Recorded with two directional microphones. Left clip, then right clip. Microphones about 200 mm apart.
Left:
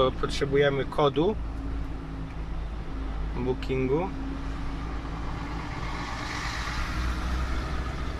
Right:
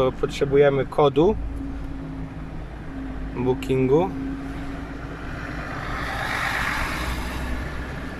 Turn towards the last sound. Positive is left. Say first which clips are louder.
# right 9 dB
turn(degrees=-60)  # may be behind; listen again after turning